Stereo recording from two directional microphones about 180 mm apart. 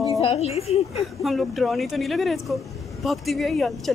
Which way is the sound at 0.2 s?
35° left (ahead or behind).